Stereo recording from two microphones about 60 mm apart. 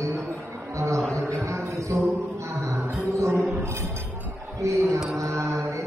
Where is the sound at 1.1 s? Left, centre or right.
Right.